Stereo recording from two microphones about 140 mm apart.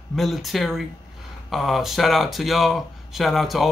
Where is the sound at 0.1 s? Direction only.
Centre (ahead or behind).